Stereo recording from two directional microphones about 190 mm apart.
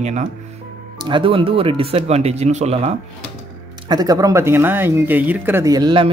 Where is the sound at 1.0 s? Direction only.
25° right (ahead or behind).